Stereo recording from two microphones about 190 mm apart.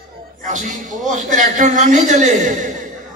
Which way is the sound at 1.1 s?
40° right (ahead or behind).